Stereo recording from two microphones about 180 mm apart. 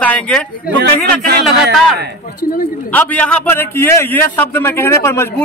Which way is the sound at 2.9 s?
5° left (ahead or behind).